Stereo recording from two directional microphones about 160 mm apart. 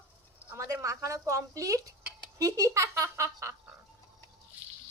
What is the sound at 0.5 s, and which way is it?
Speech, 15° right (ahead or behind).